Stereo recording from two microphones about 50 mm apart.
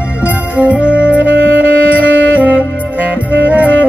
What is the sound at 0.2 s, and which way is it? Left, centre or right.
Music, right.